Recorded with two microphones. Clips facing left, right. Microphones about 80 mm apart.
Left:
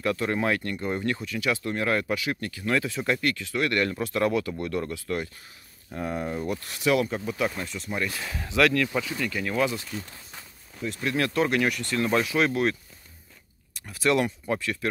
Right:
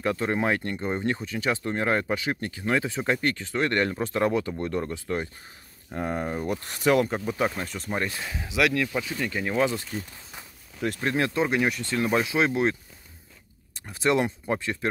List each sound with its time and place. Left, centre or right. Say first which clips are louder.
0.0 s speech: even; right
8.1 s speech: left 1 dB; right
10.7 s a sound: right 4 dB; centre
11.1 s speech: left 1 dB; right
13.7 s speech: even; right